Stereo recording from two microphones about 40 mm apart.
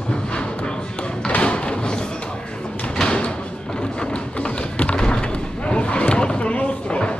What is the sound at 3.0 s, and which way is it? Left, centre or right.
Door, left.